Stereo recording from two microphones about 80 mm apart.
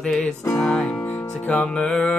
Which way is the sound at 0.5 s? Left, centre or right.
Centre.